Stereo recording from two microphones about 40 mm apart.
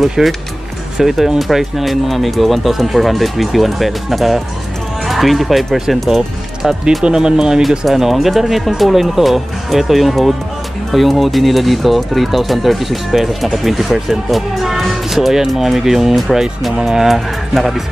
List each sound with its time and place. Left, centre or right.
0.2 s speech: centre
7.2 s speech: centre
7.8 s speech: centre